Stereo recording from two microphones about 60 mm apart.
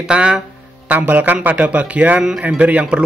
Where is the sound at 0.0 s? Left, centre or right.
Centre.